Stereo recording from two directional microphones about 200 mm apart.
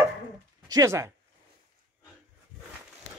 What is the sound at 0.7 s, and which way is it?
Speech, 15° right (ahead or behind).